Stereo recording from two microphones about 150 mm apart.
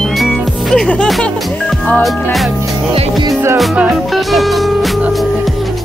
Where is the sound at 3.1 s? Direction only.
25° right (ahead or behind).